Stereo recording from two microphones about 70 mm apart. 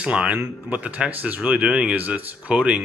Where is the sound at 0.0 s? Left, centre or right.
Centre.